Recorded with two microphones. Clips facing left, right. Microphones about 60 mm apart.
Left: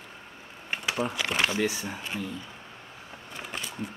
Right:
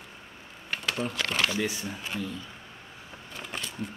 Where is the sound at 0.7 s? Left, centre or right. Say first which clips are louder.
Left 2 dB; centre.